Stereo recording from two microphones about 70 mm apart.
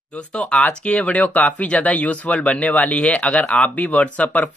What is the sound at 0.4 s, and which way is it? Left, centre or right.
Speech, centre.